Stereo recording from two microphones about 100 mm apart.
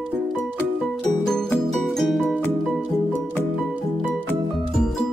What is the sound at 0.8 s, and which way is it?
Music, 5° left (ahead or behind).